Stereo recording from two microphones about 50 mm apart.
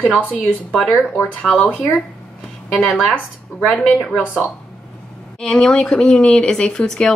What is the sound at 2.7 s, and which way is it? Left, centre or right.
A woman's voice, centre.